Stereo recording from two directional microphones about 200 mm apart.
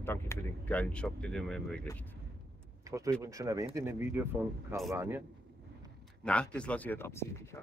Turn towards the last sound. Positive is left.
turn(degrees=10)  # may be behind; listen again after turning